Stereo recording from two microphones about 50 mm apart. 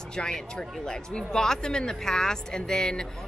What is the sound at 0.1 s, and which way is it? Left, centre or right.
Speech, centre.